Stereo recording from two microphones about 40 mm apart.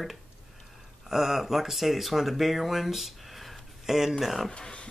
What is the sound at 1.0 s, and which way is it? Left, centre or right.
Speech, centre.